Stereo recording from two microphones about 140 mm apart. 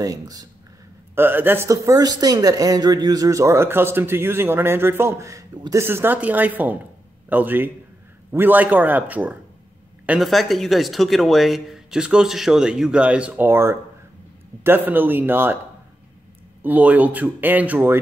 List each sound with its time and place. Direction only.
0.0 s speech: 25° right (ahead or behind)
1.1 s speech: 15° right (ahead or behind)
16.6 s speech: 10° right (ahead or behind)